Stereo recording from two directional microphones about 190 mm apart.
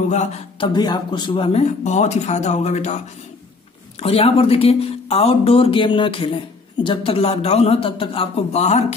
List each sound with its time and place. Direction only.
0.1 s speech: 35° left (ahead or behind)
0.7 s speech: 25° left (ahead or behind)
4.0 s speech: 30° left (ahead or behind)